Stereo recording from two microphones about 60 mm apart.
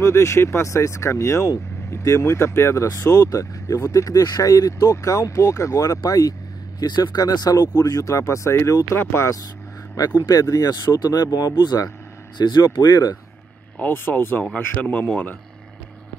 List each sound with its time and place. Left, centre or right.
0.0 s speech: left
8.9 s speech: left
9.9 s speech: left
11.7 s speech: left
12.6 s speech: left
13.7 s speech: left